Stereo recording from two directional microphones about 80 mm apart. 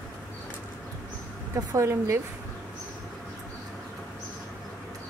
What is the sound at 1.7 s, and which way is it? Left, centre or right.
Speech, right.